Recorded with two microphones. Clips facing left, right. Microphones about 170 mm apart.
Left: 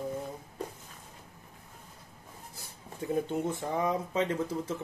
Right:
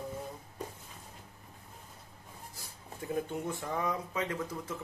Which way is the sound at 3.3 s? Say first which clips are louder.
Left 4 dB; 20° left (ahead or behind).